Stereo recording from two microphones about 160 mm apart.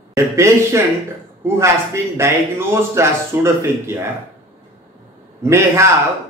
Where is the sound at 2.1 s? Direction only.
15° right (ahead or behind).